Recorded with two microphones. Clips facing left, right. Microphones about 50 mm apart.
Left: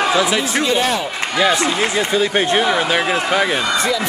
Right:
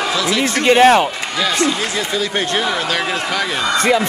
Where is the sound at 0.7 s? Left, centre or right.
Right.